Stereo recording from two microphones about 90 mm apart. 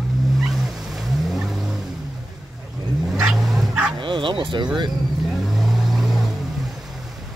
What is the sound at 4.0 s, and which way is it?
Bow-wow, 65° right (ahead or behind).